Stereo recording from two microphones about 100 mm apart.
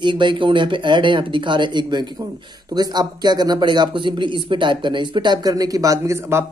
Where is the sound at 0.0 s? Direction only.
50° right (ahead or behind).